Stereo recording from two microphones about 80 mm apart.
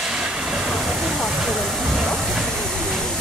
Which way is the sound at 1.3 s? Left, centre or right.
Centre.